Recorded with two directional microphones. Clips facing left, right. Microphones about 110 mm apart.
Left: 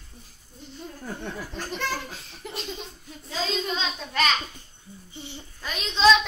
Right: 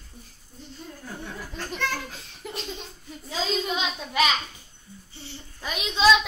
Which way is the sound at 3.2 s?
10° right (ahead or behind).